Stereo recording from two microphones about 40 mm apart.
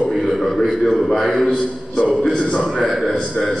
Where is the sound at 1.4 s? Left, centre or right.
Left.